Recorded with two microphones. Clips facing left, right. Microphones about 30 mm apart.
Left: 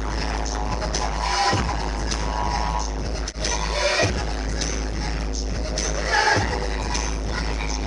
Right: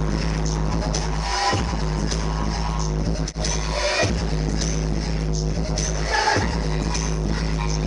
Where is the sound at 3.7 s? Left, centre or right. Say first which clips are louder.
Left 1 dB; centre.